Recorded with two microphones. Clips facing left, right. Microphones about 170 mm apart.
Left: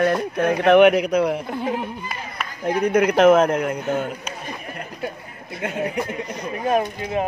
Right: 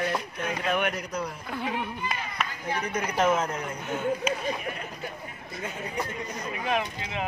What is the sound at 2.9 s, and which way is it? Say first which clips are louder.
Speech: left 11 dB; 65° left (ahead or behind).